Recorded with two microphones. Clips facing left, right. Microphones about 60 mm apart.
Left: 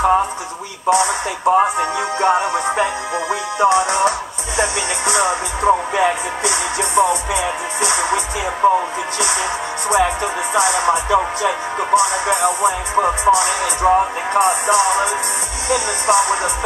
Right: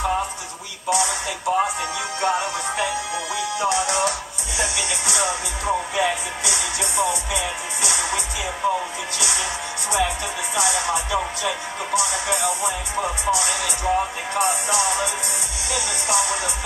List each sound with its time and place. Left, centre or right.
0.8 s a sound: left
1.5 s speech: left
1.8 s music: left
9.8 s music: left